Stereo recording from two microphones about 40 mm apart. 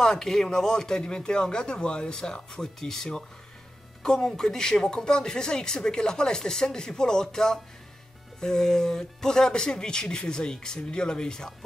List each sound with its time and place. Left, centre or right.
0.0 s speech: centre